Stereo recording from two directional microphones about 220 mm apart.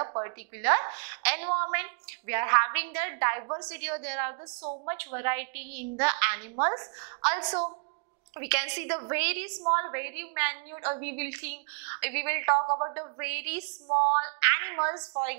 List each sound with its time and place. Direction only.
0.0 s a sound: 25° right (ahead or behind)
0.6 s a woman's voice: 15° right (ahead or behind)
8.4 s a woman's voice: 15° right (ahead or behind)
13.2 s a woman's voice: 10° right (ahead or behind)
13.8 s speech: 35° right (ahead or behind)
14.1 s a woman's voice: 15° right (ahead or behind)